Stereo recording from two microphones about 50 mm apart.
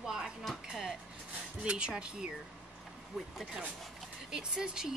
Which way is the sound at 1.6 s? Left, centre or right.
Centre.